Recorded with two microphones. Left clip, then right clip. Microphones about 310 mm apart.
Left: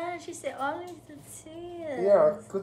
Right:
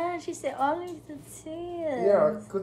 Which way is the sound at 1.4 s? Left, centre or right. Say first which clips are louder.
Right 6 dB; centre.